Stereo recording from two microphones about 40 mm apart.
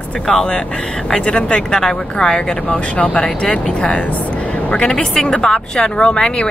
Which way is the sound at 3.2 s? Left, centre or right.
Left.